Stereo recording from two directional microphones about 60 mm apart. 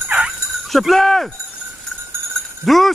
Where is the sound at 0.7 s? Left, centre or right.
Centre.